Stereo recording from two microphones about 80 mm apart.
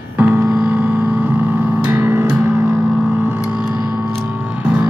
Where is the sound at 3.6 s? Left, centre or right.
Centre.